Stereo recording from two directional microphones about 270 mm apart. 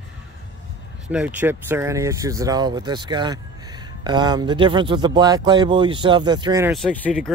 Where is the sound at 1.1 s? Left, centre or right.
Centre.